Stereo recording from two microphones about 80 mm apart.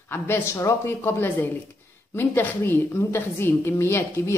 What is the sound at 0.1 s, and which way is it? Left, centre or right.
A woman's voice, left.